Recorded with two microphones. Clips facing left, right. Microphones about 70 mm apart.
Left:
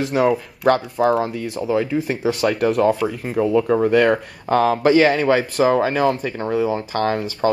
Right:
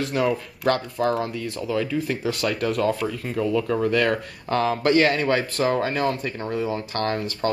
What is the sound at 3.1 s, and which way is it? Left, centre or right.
Speech, left.